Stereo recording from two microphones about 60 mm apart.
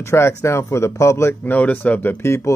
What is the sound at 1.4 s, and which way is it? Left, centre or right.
Speech, left.